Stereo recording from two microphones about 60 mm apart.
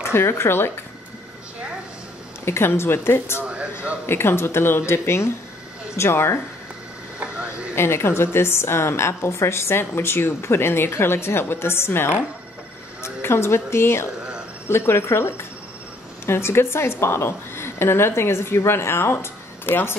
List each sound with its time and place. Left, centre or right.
0.0 s a woman's voice: left
2.4 s a woman's voice: left
7.2 s a sound: centre
7.7 s a woman's voice: left